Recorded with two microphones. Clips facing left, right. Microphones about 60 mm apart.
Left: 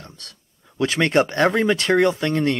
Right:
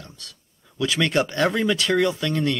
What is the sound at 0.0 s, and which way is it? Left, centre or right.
Speech, left.